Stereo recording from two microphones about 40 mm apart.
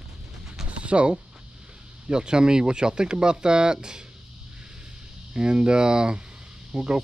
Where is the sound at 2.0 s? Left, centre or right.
Right.